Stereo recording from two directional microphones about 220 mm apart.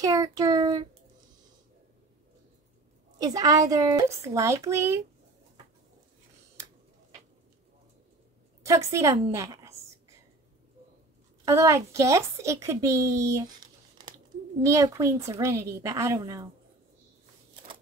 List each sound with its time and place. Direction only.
0.0 s a woman's voice: 15° right (ahead or behind)
3.2 s a woman's voice: 15° right (ahead or behind)
8.9 s a woman's voice: 15° right (ahead or behind)
11.4 s a woman's voice: 15° right (ahead or behind)